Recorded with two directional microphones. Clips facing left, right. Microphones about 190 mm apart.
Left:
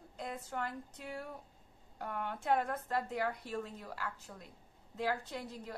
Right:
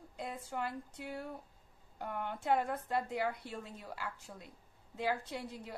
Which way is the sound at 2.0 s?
10° right (ahead or behind).